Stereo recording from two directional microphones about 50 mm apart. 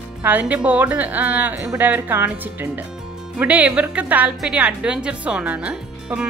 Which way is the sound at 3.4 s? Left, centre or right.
Right.